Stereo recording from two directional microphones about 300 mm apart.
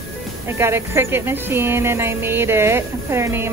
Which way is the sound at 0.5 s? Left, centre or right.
Centre.